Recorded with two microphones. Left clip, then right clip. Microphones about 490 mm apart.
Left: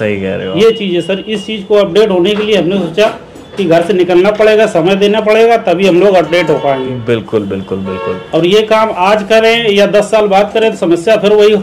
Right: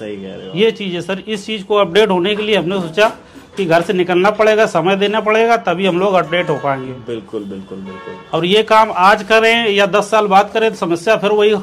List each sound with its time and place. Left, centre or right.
0.6 s a man's voice: right
8.3 s a man's voice: right